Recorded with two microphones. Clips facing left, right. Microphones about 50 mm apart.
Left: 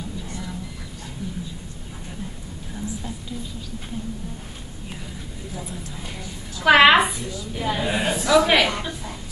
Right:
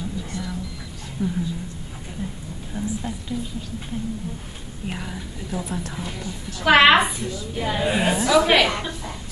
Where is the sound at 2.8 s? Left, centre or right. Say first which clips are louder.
Right 4 dB; right.